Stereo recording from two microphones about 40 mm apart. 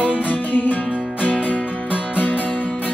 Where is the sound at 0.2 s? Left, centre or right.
Left.